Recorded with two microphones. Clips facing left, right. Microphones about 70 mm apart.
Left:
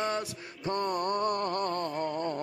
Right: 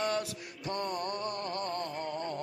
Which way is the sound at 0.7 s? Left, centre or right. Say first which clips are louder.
Left 5 dB; left.